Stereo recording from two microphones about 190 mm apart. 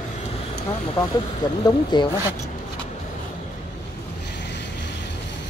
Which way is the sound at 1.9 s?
25° left (ahead or behind).